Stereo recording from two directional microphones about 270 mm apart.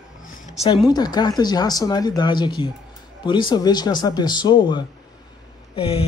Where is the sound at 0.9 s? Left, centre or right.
Centre.